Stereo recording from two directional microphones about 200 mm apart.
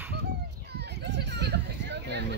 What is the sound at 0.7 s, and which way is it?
Children playing, 55° right (ahead or behind).